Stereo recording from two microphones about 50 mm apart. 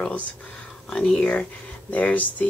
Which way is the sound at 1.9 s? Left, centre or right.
Left.